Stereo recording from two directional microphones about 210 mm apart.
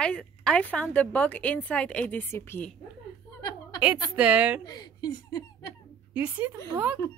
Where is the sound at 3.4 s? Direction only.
15° left (ahead or behind).